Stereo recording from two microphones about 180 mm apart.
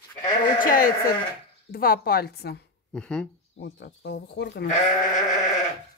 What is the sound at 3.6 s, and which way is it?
Speech, 70° left (ahead or behind).